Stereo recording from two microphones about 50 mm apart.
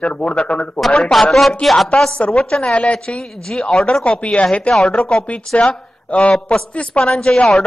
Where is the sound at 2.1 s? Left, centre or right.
Left.